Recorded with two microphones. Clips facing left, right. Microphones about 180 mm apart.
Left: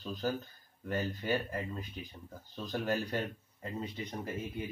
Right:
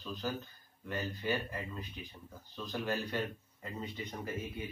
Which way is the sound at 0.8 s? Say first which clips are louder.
Left 2 dB; 45° left (ahead or behind).